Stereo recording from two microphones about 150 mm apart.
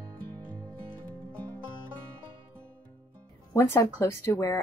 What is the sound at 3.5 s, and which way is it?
Speech, 20° left (ahead or behind).